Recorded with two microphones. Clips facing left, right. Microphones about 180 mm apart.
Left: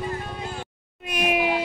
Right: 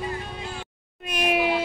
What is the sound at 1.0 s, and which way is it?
Meow, 10° left (ahead or behind).